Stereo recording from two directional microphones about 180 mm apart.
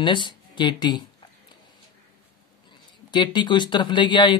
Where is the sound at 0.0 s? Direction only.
25° left (ahead or behind).